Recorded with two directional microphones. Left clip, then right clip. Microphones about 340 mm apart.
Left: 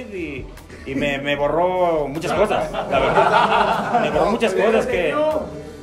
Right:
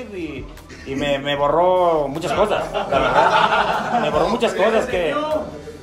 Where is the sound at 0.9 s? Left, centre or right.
Centre.